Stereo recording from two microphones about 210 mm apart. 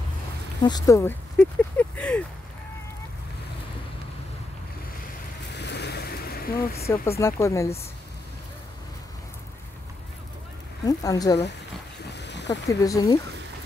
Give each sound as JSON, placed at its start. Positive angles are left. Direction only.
{"t": 0.6, "sound": "speech", "side_deg": 20}
{"t": 5.5, "sound": "ocean", "side_deg": 55}
{"t": 6.9, "sound": "speech", "side_deg": 15}
{"t": 10.9, "sound": "speech", "side_deg": 15}
{"t": 12.1, "sound": "a sound", "side_deg": 55}
{"t": 12.6, "sound": "speech", "side_deg": 15}